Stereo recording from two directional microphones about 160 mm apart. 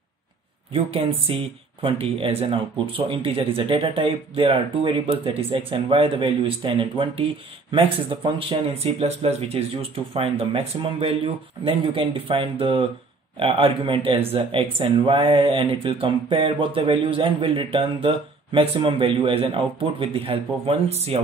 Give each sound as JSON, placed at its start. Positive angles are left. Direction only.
{"t": 0.7, "sound": "speech", "side_deg": -35}
{"t": 8.4, "sound": "speech", "side_deg": -35}